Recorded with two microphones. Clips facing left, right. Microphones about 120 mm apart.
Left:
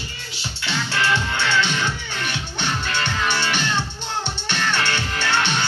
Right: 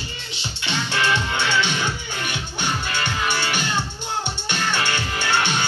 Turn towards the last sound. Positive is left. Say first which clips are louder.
# even
turn(degrees=-15)  # may be behind; listen again after turning